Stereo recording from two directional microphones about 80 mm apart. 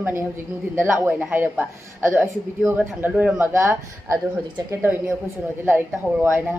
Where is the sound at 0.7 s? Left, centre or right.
Right.